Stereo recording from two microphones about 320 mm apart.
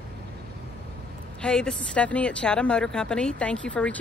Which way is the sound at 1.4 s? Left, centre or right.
Centre.